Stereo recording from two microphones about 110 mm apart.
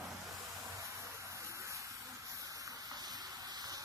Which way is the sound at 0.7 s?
30° right (ahead or behind).